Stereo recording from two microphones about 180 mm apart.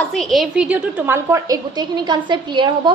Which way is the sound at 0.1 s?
Centre (ahead or behind).